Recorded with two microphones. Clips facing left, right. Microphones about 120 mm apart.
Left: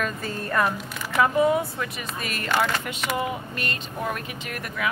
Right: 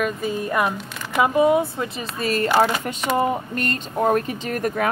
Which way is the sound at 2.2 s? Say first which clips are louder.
Right 7 dB; 35° right (ahead or behind).